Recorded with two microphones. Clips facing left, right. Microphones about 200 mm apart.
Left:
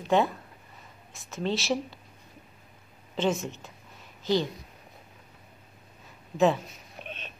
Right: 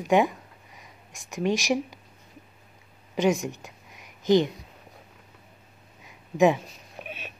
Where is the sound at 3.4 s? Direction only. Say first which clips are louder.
Right 4 dB; 15° right (ahead or behind).